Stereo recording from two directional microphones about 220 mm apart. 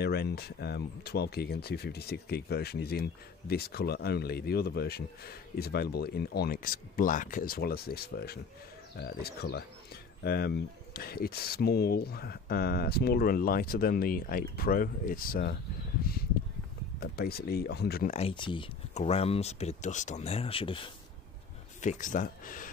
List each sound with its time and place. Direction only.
0.0 s speech: 50° left (ahead or behind)
18.1 s speech: 25° left (ahead or behind)
21.8 s speech: 35° left (ahead or behind)